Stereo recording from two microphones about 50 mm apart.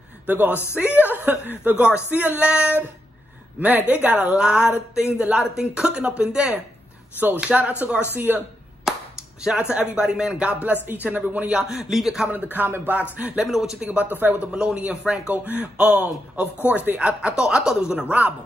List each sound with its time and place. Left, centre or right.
0.3 s speech: right
4.2 s speech: centre; by 8.5 s right
8.9 s clapping: centre
9.4 s a man's voice: centre
11.6 s a man's voice: centre
12.3 s speech: right
13.5 s a man's voice: centre
13.8 s speech: right
14.5 s speech: right
15.3 s speech: right
15.6 s speech: right
17.9 s speech: right